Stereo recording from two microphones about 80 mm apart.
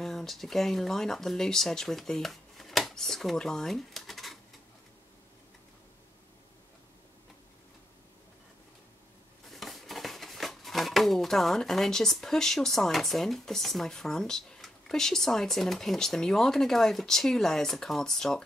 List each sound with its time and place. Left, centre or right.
0.0 s speech: centre
9.5 s speech: centre